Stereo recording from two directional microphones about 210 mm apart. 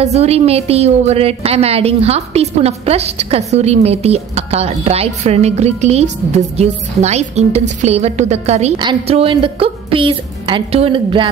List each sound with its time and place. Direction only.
0.0 s a woman's voice: 30° right (ahead or behind)